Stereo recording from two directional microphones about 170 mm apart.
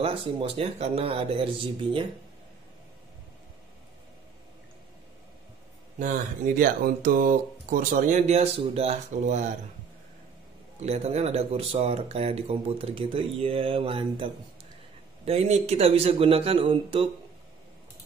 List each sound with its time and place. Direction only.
0.0 s speech: 35° right (ahead or behind)
5.9 s speech: 50° right (ahead or behind)
10.8 s speech: 40° right (ahead or behind)